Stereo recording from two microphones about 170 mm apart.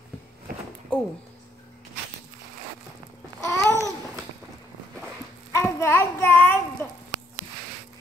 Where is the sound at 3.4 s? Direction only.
15° left (ahead or behind).